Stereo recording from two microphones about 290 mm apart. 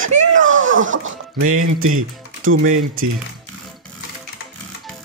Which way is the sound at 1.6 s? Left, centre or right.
Right.